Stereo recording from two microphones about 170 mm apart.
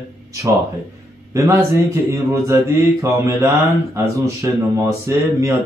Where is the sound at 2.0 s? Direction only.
15° right (ahead or behind).